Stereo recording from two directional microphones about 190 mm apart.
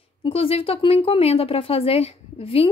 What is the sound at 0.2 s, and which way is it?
Speech, 30° left (ahead or behind).